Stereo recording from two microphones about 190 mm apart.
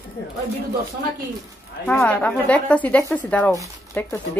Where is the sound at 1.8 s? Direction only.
10° left (ahead or behind).